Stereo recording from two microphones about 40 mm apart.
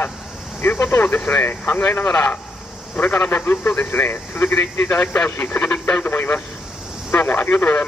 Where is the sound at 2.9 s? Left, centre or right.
Left.